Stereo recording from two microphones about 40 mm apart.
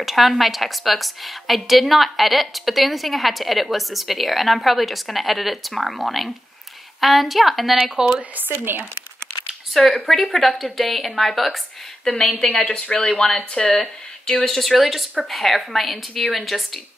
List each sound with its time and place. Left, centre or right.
0.0 s a woman's voice: centre
8.2 s speech: right
8.5 s speech: right
10.0 s a woman's voice: centre
12.1 s a woman's voice: centre
12.6 s speech: left
13.2 s speech: centre
14.4 s a woman's voice: centre